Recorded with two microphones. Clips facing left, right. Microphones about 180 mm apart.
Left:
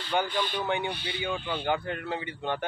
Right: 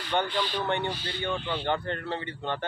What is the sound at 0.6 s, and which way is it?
Speech, 5° left (ahead or behind).